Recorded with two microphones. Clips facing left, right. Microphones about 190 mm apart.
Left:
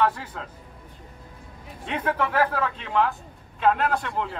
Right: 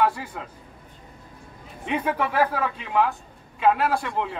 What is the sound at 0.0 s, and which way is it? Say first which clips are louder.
Speech: right 1 dB; 10° right (ahead or behind).